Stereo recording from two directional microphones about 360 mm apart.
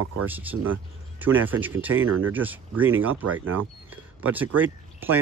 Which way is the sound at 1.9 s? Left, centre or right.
Right.